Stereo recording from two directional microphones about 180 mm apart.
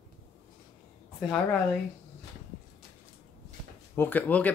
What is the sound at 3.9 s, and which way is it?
Speech, 10° left (ahead or behind).